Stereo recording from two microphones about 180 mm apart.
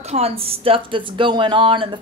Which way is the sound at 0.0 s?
35° right (ahead or behind).